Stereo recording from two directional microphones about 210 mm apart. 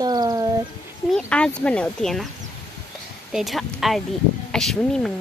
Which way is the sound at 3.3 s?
Centre (ahead or behind).